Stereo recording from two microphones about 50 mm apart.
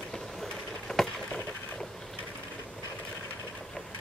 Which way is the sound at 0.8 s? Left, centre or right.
Centre.